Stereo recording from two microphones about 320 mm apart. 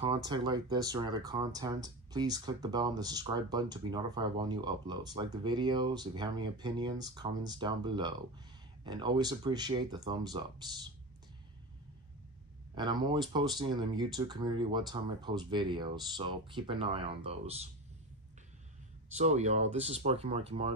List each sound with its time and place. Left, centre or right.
0.0 s speech: centre
12.7 s speech: centre
19.1 s speech: right